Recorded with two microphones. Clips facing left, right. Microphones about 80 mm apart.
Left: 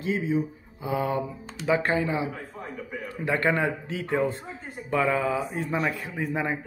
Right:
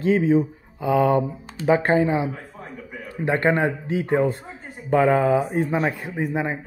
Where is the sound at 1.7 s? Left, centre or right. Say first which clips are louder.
Right 6 dB; right.